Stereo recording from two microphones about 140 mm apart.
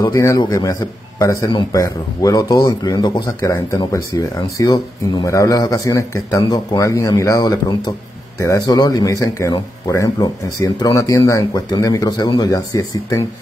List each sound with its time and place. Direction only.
0.0 s speech: 25° left (ahead or behind)